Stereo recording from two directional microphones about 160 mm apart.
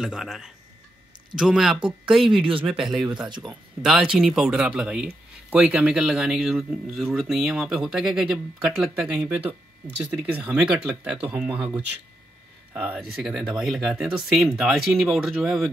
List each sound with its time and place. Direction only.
0.0 s speech: 5° right (ahead or behind)
1.8 s speech: 30° right (ahead or behind)
2.1 s speech: centre (ahead or behind)
2.4 s speech: 35° right (ahead or behind)
3.8 s speech: 5° right (ahead or behind)